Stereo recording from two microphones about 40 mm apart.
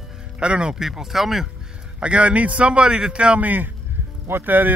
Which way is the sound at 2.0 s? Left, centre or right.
Right.